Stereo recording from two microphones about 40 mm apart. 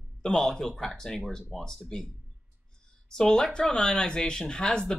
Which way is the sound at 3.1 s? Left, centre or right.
Centre.